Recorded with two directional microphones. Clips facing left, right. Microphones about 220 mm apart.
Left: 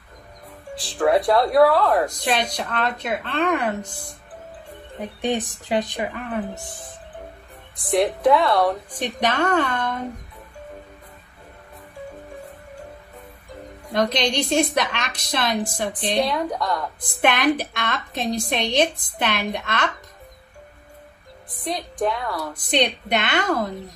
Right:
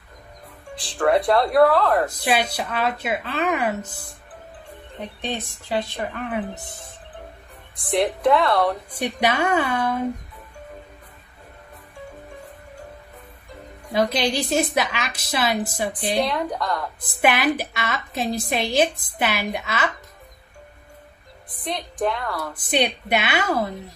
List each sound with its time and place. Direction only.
0.8 s a woman's voice: centre (ahead or behind)
4.9 s speech: 10° left (ahead or behind)
6.0 s a woman's voice: centre (ahead or behind)
6.5 s speech: 20° right (ahead or behind)
8.0 s a woman's voice: centre (ahead or behind)
8.9 s a woman's voice: 10° right (ahead or behind)
13.9 s a woman's voice: 5° right (ahead or behind)
16.3 s a woman's voice: 5° left (ahead or behind)
21.9 s a woman's voice: 5° left (ahead or behind)
22.7 s a woman's voice: 10° right (ahead or behind)